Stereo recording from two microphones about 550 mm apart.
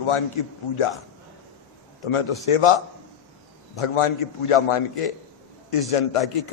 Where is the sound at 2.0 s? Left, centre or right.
Left.